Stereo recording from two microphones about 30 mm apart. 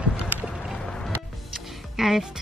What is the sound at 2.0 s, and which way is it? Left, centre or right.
Speech, centre.